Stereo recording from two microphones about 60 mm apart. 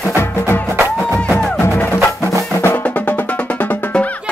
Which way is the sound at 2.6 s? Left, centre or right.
Left.